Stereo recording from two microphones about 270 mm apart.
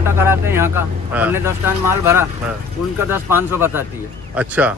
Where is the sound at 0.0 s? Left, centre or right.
Centre.